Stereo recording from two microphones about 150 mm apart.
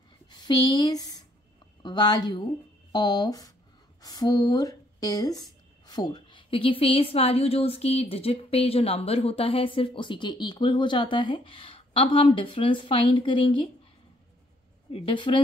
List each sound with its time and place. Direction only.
0.4 s a woman's voice: 30° left (ahead or behind)
14.9 s a woman's voice: 40° left (ahead or behind)